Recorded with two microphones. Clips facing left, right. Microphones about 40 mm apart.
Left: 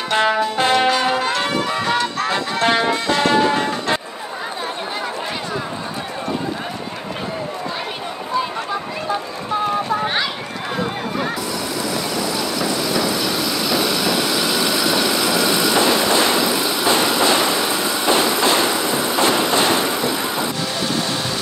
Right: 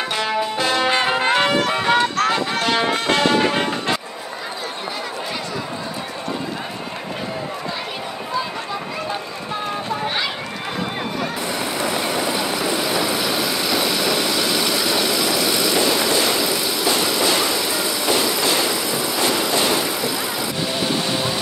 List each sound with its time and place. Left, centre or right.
0.1 s music: left
0.8 s music: right
2.1 s music: right
3.3 s music: right
11.8 s vehicle: right; by 15.0 s centre
15.7 s vehicle: left